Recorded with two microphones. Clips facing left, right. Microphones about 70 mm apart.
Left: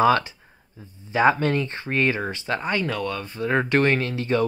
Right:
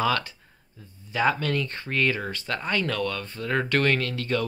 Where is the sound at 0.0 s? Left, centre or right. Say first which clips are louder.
Left 7 dB; left.